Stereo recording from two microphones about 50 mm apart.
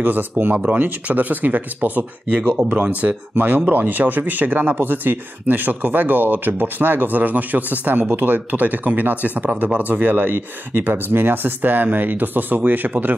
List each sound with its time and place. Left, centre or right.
0.0 s speech: right